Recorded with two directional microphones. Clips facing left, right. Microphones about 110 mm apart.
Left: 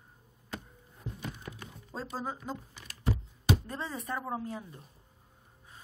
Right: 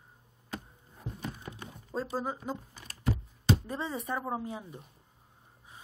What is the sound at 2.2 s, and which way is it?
Speech, 5° right (ahead or behind).